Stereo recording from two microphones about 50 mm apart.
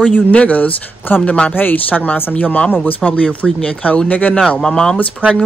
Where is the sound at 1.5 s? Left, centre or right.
Left.